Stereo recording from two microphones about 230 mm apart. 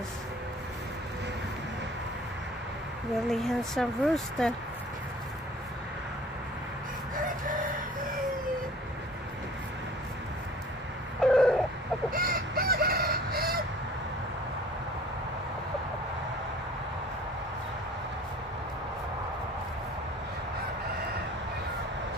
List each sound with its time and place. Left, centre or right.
3.3 s speech: centre
7.2 s chicken: right
11.1 s a sound: centre
12.1 s chicken: right